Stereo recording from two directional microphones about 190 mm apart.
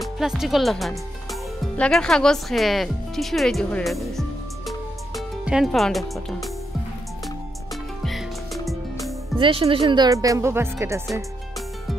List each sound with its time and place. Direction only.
0.0 s speech: centre (ahead or behind)
8.0 s music: centre (ahead or behind)
9.4 s speech: 30° right (ahead or behind)